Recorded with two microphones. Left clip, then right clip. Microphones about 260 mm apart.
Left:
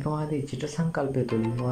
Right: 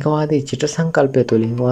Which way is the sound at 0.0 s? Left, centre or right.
Right.